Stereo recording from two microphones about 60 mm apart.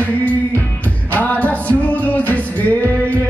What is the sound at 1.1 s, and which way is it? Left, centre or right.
Music, left.